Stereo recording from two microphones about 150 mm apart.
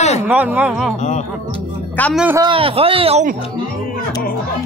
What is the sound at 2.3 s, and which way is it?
Speech, 30° right (ahead or behind).